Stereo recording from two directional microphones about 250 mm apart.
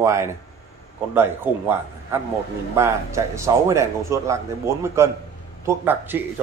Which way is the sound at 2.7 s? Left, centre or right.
Centre.